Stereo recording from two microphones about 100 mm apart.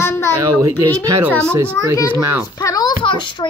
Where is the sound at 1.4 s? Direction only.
25° right (ahead or behind).